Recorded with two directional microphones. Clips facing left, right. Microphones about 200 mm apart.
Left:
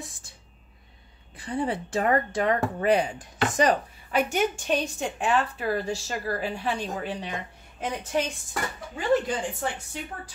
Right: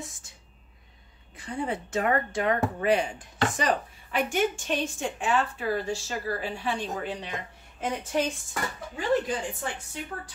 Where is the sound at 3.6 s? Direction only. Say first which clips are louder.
Left 3 dB; 45° left (ahead or behind).